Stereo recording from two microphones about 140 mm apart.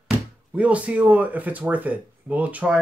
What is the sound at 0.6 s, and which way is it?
Speech, 10° right (ahead or behind).